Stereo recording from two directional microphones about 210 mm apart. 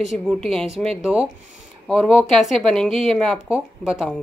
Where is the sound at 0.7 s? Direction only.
30° right (ahead or behind).